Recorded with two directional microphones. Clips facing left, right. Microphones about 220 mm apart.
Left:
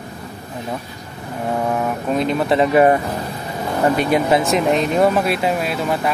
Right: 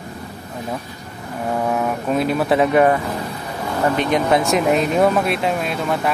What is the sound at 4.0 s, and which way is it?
Speech, 5° left (ahead or behind).